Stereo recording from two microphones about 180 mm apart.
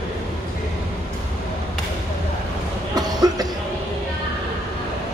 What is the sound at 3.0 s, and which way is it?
Cough, 20° right (ahead or behind).